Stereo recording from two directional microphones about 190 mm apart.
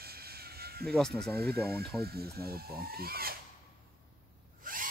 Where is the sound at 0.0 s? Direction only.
55° right (ahead or behind).